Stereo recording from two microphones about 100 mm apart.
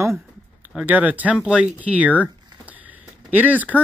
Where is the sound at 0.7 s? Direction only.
15° right (ahead or behind).